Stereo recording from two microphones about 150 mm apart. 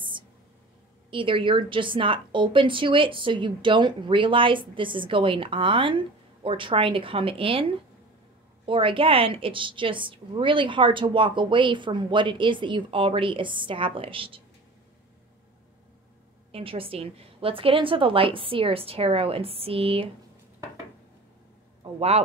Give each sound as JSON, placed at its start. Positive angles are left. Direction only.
{"t": 1.1, "sound": "a woman's voice", "side_deg": -35}
{"t": 16.5, "sound": "a woman's voice", "side_deg": -40}
{"t": 21.8, "sound": "a sound", "side_deg": -40}